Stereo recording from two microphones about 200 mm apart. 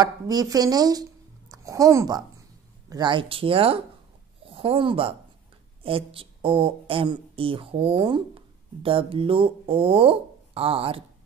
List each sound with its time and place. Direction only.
0.0 s speech: 20° right (ahead or behind)